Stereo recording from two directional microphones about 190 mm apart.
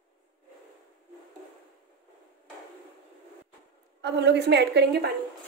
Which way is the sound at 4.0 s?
65° right (ahead or behind).